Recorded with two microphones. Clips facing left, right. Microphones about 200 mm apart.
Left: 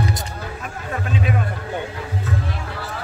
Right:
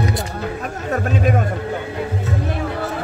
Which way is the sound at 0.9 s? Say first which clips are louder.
Right 5 dB; 45° right (ahead or behind).